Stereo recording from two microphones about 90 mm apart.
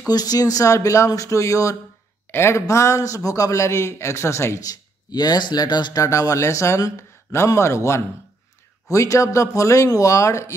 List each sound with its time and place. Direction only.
0.1 s speech: 45° left (ahead or behind); by 4.6 s 30° left (ahead or behind)
4.6 s speech: 50° left (ahead or behind)
6.0 s speech: 35° left (ahead or behind)